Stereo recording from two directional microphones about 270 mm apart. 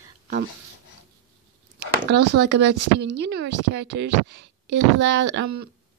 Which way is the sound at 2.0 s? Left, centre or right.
Right.